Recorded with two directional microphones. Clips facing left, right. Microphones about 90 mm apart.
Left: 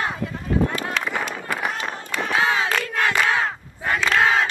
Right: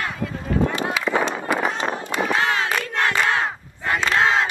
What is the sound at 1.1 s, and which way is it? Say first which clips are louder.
Run: right 5 dB; 25° right (ahead or behind).